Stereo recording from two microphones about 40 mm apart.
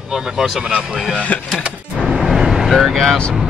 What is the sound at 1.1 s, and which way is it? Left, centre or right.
Speech, left.